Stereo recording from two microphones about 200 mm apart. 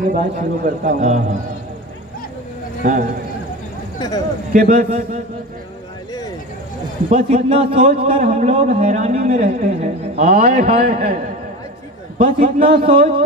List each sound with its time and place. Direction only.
0.1 s a man's voice: 45° right (ahead or behind)
2.8 s a man's voice: 40° right (ahead or behind)
4.5 s a man's voice: 40° right (ahead or behind)
7.1 s a man's voice: 35° right (ahead or behind)